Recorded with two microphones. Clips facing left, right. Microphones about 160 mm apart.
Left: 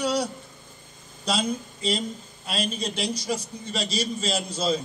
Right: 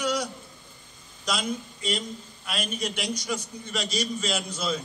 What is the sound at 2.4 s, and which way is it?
A man's voice, 30° left (ahead or behind).